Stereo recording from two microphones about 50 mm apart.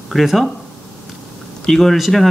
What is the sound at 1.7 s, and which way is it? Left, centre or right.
Speech, centre.